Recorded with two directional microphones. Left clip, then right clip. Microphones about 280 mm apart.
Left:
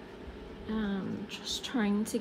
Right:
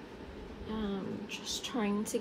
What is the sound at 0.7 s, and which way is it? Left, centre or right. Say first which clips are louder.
A woman's voice: left 2 dB; left.